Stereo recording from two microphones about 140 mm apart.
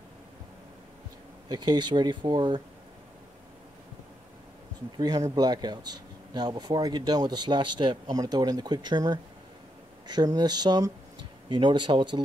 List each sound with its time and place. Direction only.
1.5 s speech: 30° right (ahead or behind)
4.9 s speech: 30° right (ahead or behind)